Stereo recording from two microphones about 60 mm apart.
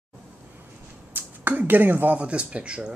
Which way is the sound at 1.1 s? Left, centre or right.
Right.